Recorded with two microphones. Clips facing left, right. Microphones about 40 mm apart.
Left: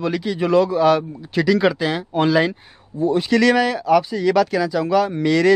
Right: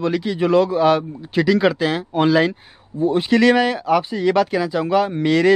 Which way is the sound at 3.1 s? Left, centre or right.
Centre.